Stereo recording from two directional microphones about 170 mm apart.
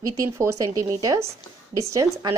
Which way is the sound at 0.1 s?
20° right (ahead or behind).